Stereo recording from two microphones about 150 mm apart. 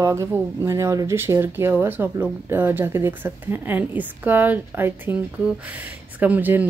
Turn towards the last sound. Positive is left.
turn(degrees=-10)  # may be behind; listen again after turning